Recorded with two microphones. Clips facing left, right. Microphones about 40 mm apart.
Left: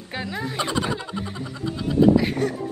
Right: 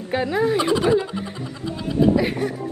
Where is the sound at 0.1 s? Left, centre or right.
Centre.